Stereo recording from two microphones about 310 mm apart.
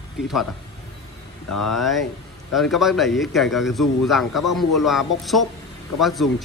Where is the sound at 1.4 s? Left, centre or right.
Left.